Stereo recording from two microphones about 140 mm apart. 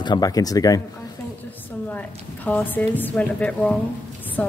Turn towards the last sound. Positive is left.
turn(degrees=10)  # may be behind; listen again after turning